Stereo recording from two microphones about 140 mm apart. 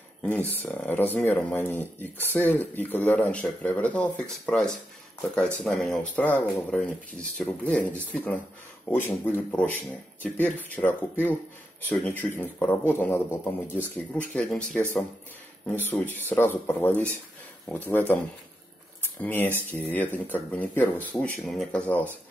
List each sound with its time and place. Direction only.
0.2 s speech: 10° left (ahead or behind)
20.8 s speech: 20° left (ahead or behind)
21.2 s speech: 5° left (ahead or behind)